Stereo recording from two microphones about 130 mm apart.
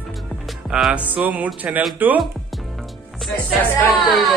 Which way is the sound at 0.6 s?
5° right (ahead or behind).